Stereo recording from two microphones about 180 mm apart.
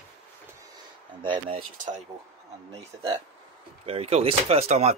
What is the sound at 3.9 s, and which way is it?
Speech, 35° right (ahead or behind).